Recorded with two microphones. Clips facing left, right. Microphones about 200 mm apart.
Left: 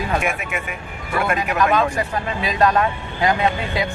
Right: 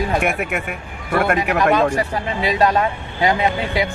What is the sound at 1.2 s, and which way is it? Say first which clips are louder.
Speech: right 4 dB; 60° right (ahead or behind).